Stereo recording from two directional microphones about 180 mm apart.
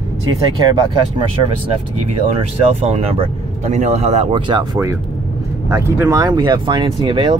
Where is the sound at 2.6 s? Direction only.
35° right (ahead or behind).